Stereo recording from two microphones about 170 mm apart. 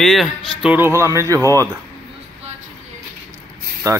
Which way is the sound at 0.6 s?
10° right (ahead or behind).